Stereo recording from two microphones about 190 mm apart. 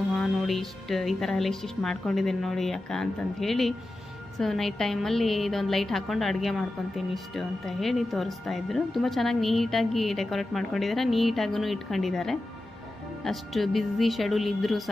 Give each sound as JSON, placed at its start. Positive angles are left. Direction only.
{"t": 0.1, "sound": "a woman's voice", "side_deg": 0}